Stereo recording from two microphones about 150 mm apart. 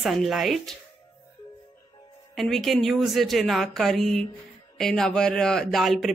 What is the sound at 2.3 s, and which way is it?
Speech, centre (ahead or behind).